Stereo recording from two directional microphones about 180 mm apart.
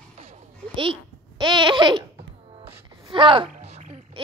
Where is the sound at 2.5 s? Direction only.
30° right (ahead or behind).